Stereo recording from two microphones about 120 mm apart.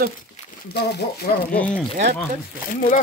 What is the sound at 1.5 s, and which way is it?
Speech, 10° left (ahead or behind).